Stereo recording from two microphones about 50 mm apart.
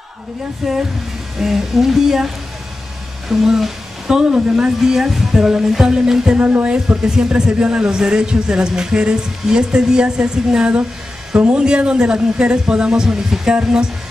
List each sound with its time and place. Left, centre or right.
0.6 s speech: centre
6.3 s speech: right
6.6 s a man's voice: centre